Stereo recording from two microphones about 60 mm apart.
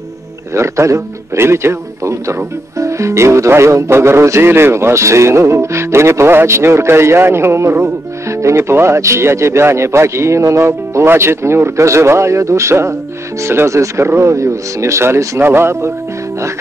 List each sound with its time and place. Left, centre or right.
0.6 s speech: right